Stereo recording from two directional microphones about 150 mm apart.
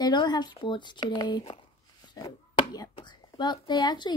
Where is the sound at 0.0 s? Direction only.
30° left (ahead or behind).